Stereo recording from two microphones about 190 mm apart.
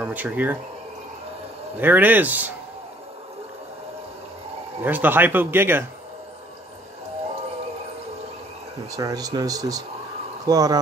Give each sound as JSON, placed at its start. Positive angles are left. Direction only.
{"t": 0.0, "sound": "speech", "side_deg": -10}
{"t": 1.8, "sound": "speech", "side_deg": -10}
{"t": 4.8, "sound": "speech", "side_deg": -10}
{"t": 8.9, "sound": "speech", "side_deg": -20}